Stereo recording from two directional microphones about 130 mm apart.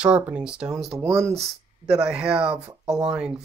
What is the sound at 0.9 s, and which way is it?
Speech, 20° right (ahead or behind).